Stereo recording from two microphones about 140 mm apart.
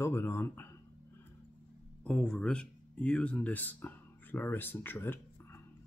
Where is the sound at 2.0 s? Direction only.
10° left (ahead or behind).